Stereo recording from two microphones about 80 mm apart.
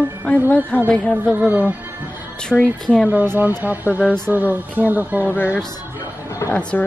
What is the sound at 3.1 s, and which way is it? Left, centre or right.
Speech, right.